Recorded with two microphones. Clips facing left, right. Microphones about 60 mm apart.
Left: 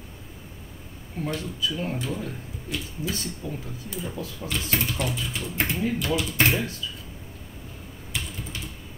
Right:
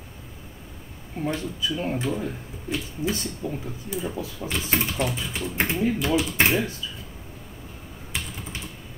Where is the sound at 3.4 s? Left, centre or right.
Centre.